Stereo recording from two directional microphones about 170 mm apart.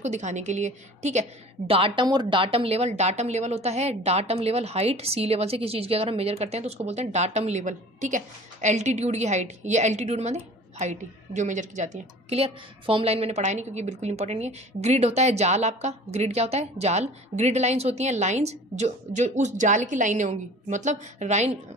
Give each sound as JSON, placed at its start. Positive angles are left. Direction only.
{"t": 0.0, "sound": "a woman's voice", "side_deg": -45}
{"t": 1.7, "sound": "speech", "side_deg": -30}